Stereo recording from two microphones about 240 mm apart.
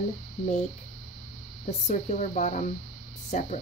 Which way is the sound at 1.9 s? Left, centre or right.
Left.